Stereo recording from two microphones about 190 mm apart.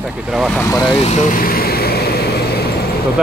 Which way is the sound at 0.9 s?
35° left (ahead or behind).